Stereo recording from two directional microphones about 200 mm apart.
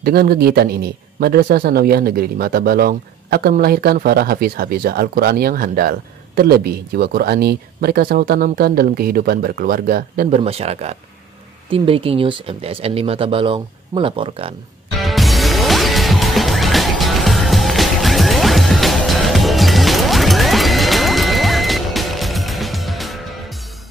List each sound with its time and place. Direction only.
0.0 s a man's voice: 50° right (ahead or behind); by 14.5 s 25° right (ahead or behind)
15.0 s music: centre (ahead or behind)